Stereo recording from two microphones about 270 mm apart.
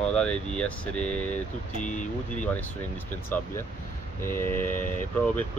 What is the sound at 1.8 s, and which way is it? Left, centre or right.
Speech, left.